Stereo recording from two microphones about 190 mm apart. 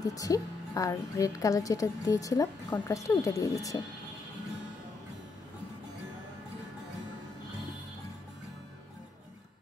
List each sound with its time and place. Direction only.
0.0 s a woman's voice: 20° left (ahead or behind)